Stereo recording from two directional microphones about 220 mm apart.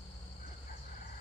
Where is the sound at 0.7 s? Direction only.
35° left (ahead or behind).